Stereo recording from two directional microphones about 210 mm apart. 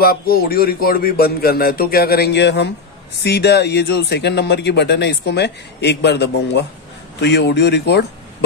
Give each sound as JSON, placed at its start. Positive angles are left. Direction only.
{"t": 0.0, "sound": "speech", "side_deg": 45}